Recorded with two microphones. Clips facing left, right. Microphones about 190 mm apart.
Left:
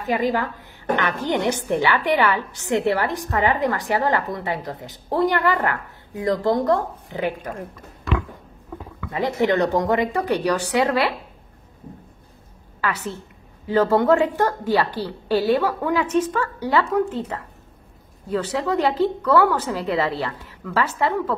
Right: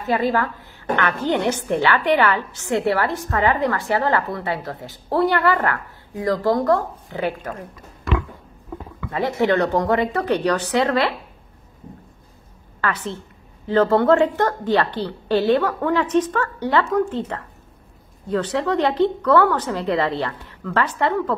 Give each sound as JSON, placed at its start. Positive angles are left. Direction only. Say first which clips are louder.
{"t": 0.0, "sound": "a woman's voice", "louder": "right 1 dB", "side_deg": 15}
{"t": 9.1, "sound": "a woman's voice", "louder": "right 1 dB", "side_deg": 15}
{"t": 12.8, "sound": "a woman's voice", "louder": "right 1 dB", "side_deg": 10}